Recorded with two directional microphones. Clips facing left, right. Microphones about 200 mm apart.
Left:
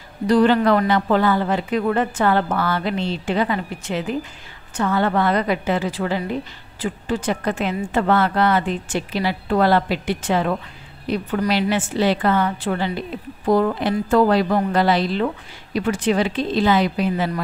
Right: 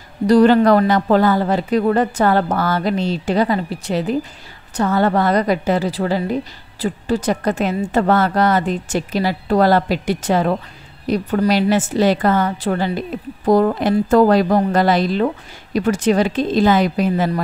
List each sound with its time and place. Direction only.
0.3 s a woman's voice: 40° right (ahead or behind)